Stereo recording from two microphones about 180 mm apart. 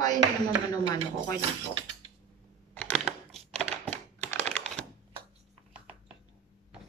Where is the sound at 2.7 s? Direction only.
5° left (ahead or behind).